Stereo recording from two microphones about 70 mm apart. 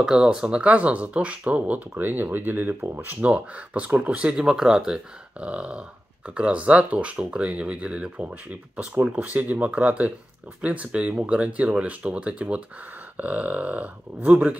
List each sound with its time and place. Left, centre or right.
0.0 s speech: centre